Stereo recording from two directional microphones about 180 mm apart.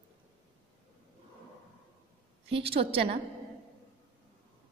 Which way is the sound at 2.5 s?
30° right (ahead or behind).